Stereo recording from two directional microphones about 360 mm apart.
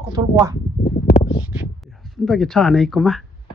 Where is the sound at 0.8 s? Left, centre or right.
Left.